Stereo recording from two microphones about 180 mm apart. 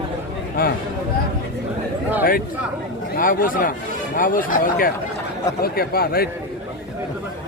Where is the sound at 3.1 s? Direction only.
50° left (ahead or behind).